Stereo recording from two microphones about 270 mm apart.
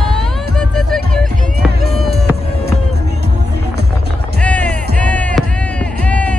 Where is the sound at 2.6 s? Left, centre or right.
Right.